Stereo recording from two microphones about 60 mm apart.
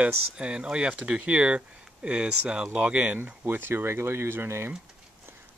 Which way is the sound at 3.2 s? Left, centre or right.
Right.